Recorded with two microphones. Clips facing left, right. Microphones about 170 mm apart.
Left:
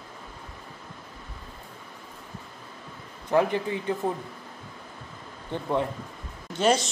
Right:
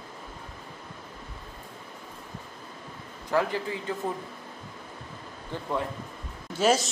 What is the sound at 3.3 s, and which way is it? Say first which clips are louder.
Speech: left 4 dB; 20° left (ahead or behind).